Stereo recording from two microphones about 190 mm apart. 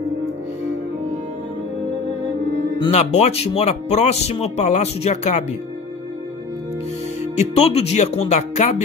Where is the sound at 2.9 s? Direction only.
35° left (ahead or behind).